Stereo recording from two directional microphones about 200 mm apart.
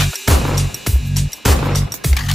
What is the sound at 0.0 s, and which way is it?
Music, centre (ahead or behind).